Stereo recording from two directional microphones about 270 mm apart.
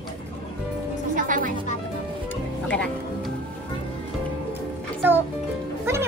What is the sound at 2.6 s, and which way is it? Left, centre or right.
Speech, centre.